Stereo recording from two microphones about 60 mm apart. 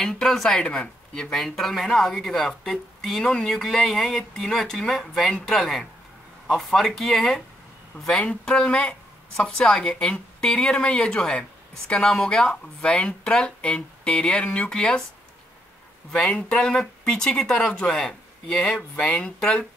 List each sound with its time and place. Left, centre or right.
0.0 s speech: centre
16.1 s speech: centre